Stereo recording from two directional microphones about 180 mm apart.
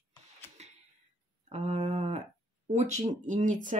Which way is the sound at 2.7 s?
40° right (ahead or behind).